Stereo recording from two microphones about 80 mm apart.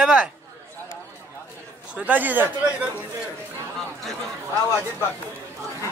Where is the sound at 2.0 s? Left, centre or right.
Right.